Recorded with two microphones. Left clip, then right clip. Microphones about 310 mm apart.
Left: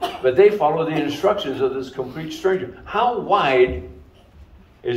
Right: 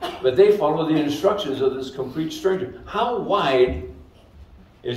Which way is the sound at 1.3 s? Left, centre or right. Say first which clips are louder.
Even; centre.